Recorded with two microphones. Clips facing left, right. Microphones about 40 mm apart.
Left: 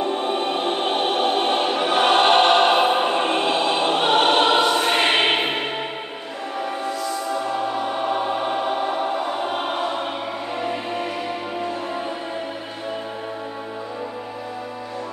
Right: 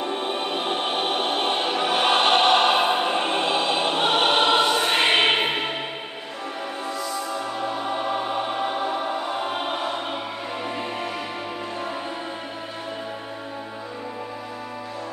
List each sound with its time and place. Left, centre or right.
0.0 s music: centre
8.1 s choir: centre
9.4 s music: centre